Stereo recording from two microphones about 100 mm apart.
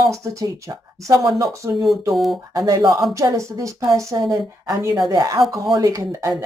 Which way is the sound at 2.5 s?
35° right (ahead or behind).